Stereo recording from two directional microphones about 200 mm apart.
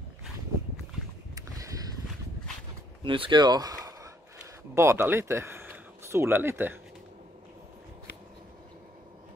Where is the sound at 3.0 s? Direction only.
25° right (ahead or behind).